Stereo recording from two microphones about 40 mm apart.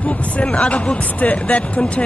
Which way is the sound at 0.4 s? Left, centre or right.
Left.